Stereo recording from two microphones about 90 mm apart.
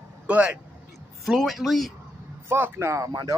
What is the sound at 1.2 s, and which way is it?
Speech, centre (ahead or behind).